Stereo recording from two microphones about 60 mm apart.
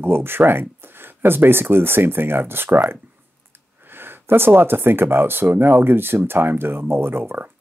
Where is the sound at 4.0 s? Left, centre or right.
Right.